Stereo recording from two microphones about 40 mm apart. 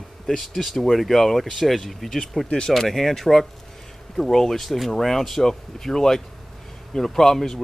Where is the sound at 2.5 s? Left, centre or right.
Centre.